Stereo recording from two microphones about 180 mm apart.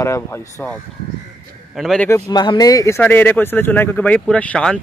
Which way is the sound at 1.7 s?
Centre (ahead or behind).